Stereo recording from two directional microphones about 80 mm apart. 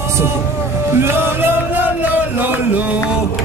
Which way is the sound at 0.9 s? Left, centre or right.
Right.